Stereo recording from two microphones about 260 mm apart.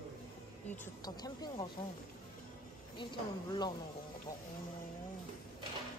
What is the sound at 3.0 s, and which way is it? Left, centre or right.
Speech, centre.